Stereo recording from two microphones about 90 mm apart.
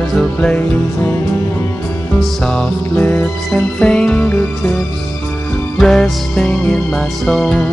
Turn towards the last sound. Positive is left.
turn(degrees=5)  # may be behind; listen again after turning